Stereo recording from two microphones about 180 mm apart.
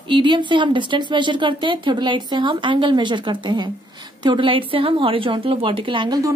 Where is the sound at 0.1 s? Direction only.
25° right (ahead or behind).